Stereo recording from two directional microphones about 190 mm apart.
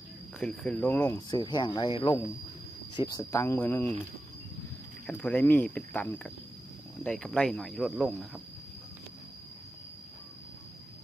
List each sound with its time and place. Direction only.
0.4 s speech: 5° left (ahead or behind)
1.0 s speech: 20° left (ahead or behind)
5.0 s speech: 5° left (ahead or behind)